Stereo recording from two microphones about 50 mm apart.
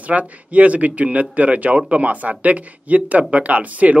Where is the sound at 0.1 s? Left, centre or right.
Right.